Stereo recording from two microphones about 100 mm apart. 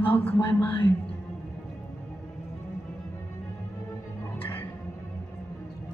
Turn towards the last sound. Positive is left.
turn(degrees=20)  # may be behind; listen again after turning